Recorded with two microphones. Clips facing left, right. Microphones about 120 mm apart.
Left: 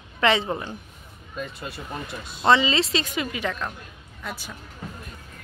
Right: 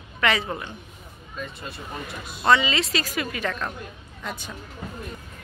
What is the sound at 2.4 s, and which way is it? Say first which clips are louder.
Speech: left 1 dB; 30° left (ahead or behind).